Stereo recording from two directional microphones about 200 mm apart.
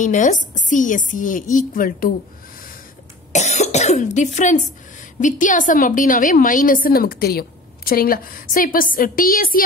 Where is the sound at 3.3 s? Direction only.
35° left (ahead or behind).